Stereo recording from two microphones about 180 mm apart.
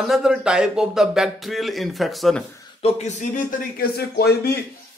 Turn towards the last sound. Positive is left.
turn(degrees=60)  # may be behind; listen again after turning